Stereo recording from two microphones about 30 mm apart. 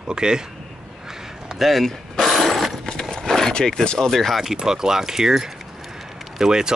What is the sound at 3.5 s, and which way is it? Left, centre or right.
Speech, left.